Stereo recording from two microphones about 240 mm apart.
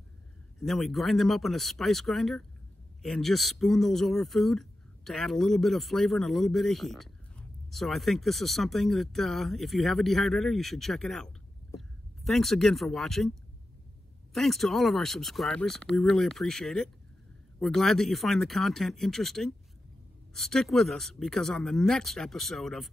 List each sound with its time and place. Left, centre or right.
0.6 s speech: centre